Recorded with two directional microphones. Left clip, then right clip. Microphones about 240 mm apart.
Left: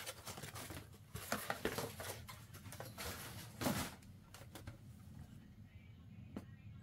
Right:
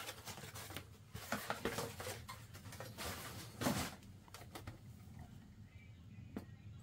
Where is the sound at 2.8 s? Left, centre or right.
Left.